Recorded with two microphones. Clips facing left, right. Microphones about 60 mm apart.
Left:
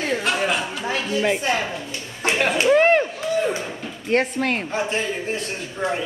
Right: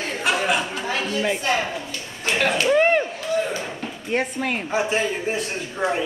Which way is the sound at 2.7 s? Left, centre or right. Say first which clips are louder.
Left 3 dB; centre.